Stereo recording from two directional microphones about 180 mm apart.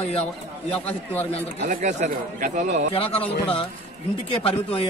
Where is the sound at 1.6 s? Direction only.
40° right (ahead or behind).